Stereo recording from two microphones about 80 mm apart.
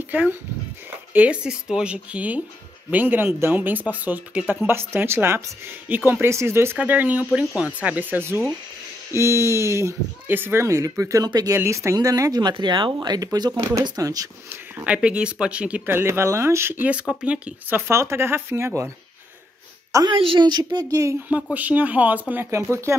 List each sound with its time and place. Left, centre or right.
0.1 s speech: right
6.2 s speech: right
6.8 s speech: centre; by 12.4 s right
12.4 s speech: right
14.9 s speech: centre
15.8 s speech: right
17.1 s speech: centre
17.7 s speech: right
20.1 s a woman's voice: right
20.9 s speech: right
21.5 s speech: centre
22.5 s speech: right